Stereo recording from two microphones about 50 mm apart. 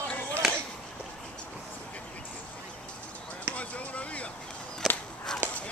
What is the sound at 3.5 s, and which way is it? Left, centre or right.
Basketball bounce, left.